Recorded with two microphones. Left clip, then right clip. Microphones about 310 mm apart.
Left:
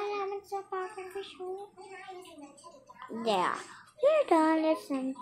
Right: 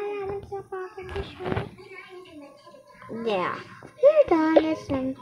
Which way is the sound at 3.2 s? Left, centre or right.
Centre.